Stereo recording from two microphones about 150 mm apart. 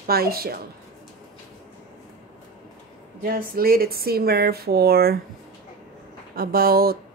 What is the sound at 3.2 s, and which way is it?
Speech, 75° right (ahead or behind).